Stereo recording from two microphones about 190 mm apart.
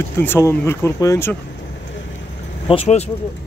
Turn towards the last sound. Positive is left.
turn(degrees=30)  # may be behind; listen again after turning